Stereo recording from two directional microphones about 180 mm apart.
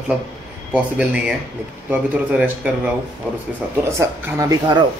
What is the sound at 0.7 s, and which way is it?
Speech, 5° right (ahead or behind).